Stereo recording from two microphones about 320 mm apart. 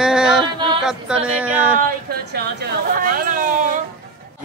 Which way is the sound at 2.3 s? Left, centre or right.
Right.